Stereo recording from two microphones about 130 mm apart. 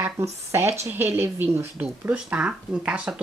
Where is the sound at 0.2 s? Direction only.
20° right (ahead or behind).